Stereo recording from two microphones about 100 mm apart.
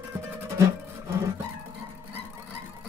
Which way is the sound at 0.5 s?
30° right (ahead or behind).